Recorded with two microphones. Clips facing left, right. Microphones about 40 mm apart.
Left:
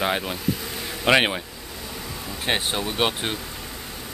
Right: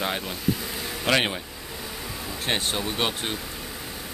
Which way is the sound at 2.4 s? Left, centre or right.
Centre.